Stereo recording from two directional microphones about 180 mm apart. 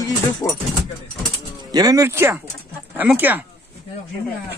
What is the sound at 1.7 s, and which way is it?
Speech, 20° right (ahead or behind).